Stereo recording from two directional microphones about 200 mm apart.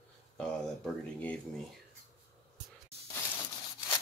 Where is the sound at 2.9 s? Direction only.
30° right (ahead or behind).